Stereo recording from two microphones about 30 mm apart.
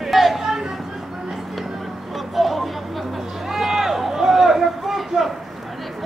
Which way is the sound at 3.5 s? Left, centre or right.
Centre.